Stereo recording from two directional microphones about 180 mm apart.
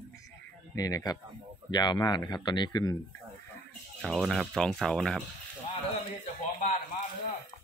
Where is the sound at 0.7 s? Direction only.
20° left (ahead or behind).